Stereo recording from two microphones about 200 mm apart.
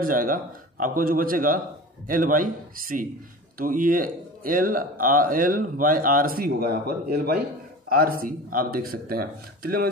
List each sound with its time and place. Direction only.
0.0 s a man's voice: 45° right (ahead or behind)